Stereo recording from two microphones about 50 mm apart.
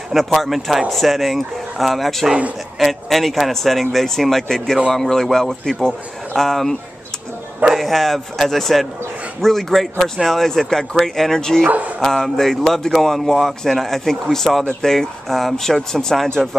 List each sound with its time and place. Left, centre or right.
0.1 s a man's voice: centre
11.6 s speech: right
12.0 s a man's voice: centre